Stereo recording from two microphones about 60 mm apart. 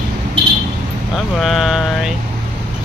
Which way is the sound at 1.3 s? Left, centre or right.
Centre.